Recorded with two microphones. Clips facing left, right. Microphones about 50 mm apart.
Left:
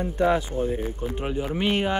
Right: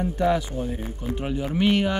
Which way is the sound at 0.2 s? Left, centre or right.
Left.